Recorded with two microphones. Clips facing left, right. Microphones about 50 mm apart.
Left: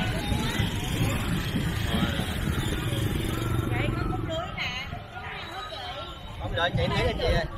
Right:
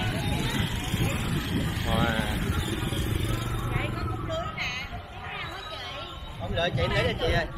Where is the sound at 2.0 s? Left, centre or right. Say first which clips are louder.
Right 5 dB; right.